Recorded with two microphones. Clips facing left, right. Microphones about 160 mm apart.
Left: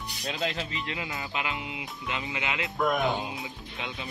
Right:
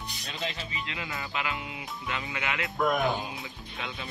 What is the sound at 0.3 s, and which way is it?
Speech, 75° left (ahead or behind).